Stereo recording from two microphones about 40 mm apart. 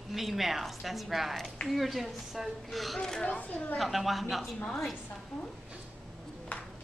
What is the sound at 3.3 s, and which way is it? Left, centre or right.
Speech, left.